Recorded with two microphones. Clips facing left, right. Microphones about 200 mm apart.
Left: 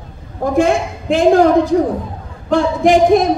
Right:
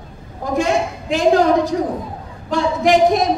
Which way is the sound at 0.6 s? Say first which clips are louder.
Left 4 dB; 55° left (ahead or behind).